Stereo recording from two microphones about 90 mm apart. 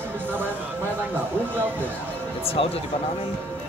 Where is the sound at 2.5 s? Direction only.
90° left.